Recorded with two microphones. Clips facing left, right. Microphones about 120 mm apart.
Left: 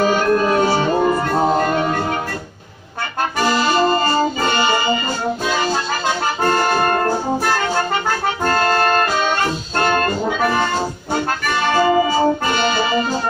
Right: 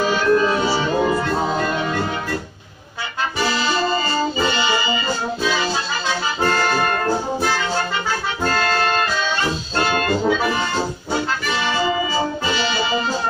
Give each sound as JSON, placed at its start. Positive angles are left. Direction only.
{"t": 0.0, "sound": "music", "side_deg": 50}
{"t": 3.3, "sound": "music", "side_deg": 50}
{"t": 5.4, "sound": "accordion", "side_deg": 50}
{"t": 7.1, "sound": "brass instrument", "side_deg": 50}
{"t": 8.5, "sound": "music", "side_deg": 50}
{"t": 11.4, "sound": "accordion", "side_deg": 50}